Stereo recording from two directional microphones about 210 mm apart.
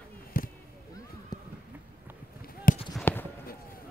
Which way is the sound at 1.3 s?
20° left (ahead or behind).